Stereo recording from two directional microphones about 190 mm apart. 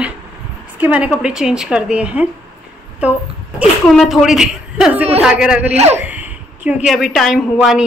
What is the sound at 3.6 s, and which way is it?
A woman's voice, centre (ahead or behind).